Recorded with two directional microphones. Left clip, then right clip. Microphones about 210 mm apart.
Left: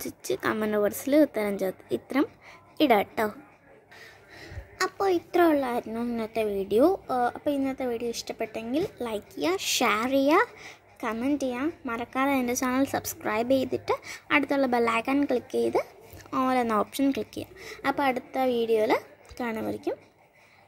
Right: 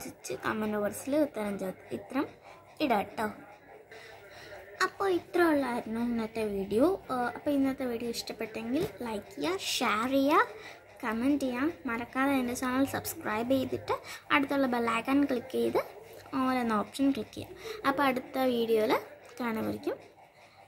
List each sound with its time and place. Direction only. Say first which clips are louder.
0.0 s speech: left 7 dB; 35° left (ahead or behind)
4.7 s a woman's voice: left 3 dB; 25° left (ahead or behind)